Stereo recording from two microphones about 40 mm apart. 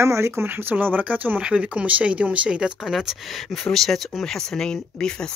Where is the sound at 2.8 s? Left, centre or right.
Centre.